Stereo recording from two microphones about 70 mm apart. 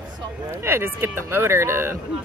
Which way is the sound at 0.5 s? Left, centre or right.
Right.